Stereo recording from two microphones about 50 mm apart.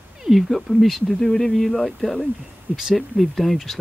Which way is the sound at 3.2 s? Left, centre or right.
Centre.